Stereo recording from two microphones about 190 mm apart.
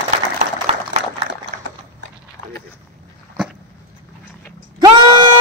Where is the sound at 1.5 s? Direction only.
40° right (ahead or behind).